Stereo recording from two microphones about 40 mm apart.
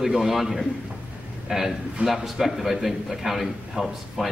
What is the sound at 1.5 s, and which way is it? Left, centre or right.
Speech, centre.